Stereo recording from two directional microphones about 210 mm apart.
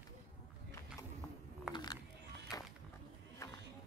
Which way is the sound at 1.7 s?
20° left (ahead or behind).